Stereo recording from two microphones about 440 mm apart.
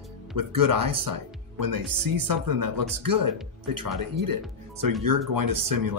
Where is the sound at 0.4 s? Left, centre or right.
Right.